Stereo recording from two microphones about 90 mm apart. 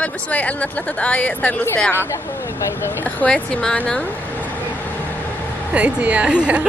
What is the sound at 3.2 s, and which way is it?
Speech, 10° left (ahead or behind).